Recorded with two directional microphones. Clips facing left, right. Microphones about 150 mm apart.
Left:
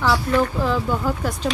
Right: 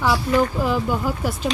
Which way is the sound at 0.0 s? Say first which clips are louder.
Even; 10° right (ahead or behind).